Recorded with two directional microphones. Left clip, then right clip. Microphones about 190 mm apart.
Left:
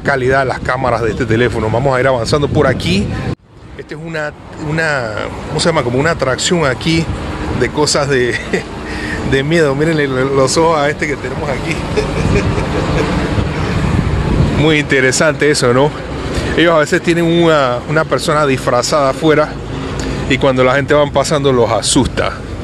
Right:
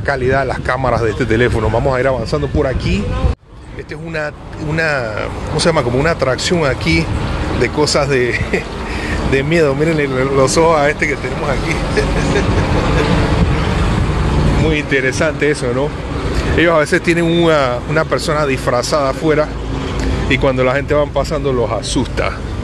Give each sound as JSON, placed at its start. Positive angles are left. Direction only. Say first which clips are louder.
{"t": 0.0, "sound": "speech", "louder": "left 3 dB", "side_deg": 10}
{"t": 4.7, "sound": "speech", "louder": "left 1 dB", "side_deg": 10}
{"t": 14.7, "sound": "speech", "louder": "left 5 dB", "side_deg": 35}
{"t": 16.5, "sound": "speech", "louder": "left 1 dB", "side_deg": 15}